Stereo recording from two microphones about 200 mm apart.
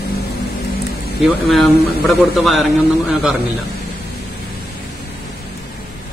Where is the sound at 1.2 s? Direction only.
Centre (ahead or behind).